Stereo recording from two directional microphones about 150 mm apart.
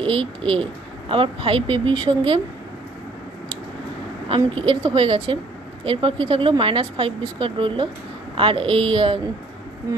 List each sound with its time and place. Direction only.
0.0 s speech: 35° right (ahead or behind)
4.3 s speech: 35° right (ahead or behind)